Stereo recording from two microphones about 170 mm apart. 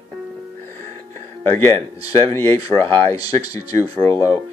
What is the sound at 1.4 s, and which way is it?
Speech, 15° left (ahead or behind).